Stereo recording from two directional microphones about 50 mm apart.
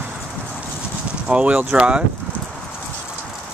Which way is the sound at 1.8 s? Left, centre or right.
Right.